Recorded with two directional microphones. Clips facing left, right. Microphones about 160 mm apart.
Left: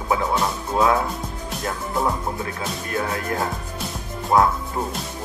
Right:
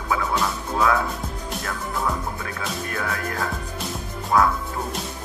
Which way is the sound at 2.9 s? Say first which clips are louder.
Left 6 dB; 25° left (ahead or behind).